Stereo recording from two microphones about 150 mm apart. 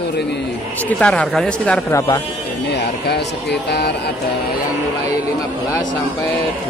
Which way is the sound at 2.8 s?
90° left.